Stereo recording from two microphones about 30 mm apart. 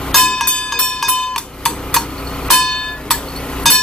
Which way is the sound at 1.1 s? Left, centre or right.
Centre.